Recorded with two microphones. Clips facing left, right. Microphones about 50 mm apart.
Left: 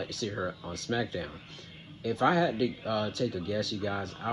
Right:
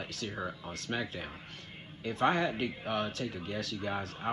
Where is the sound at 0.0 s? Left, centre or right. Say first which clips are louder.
Left 4 dB; right.